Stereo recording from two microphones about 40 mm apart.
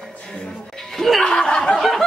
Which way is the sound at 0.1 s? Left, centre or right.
Left.